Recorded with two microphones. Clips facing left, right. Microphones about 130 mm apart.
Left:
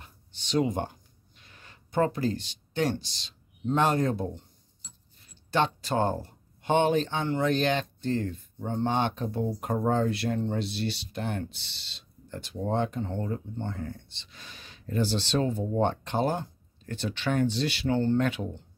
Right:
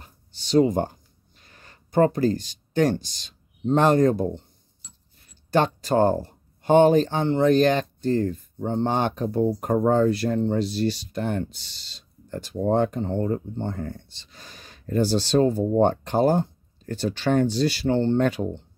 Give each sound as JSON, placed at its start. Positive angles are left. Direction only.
{"t": 0.0, "sound": "a sound", "side_deg": -40}
{"t": 3.6, "sound": "speech", "side_deg": -45}
{"t": 5.3, "sound": "speech", "side_deg": -45}
{"t": 18.2, "sound": "speech", "side_deg": -40}